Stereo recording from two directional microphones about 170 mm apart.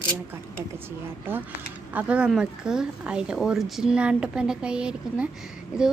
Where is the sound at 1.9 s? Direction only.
10° right (ahead or behind).